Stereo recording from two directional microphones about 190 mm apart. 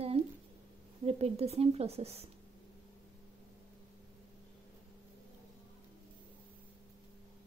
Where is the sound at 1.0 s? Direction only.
35° right (ahead or behind).